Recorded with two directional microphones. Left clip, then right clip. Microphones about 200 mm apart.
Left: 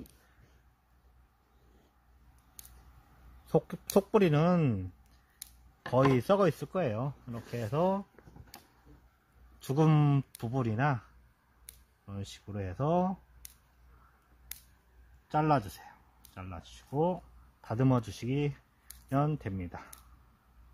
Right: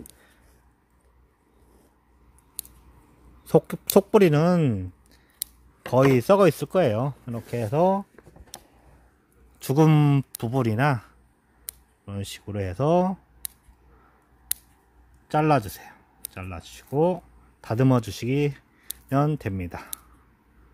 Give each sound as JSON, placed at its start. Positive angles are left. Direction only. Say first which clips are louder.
{"t": 3.4, "sound": "speech", "louder": "right 9 dB", "side_deg": -30}
{"t": 5.9, "sound": "speech", "louder": "right 8 dB", "side_deg": -25}
{"t": 9.6, "sound": "speech", "louder": "right 8 dB", "side_deg": -30}
{"t": 10.3, "sound": "speech", "louder": "right 9 dB", "side_deg": -35}
{"t": 12.1, "sound": "speech", "louder": "right 10 dB", "side_deg": -35}
{"t": 15.2, "sound": "speech", "louder": "right 7 dB", "side_deg": -35}